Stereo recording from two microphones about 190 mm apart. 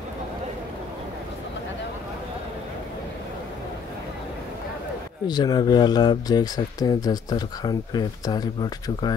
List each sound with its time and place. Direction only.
5.2 s speech: 20° left (ahead or behind)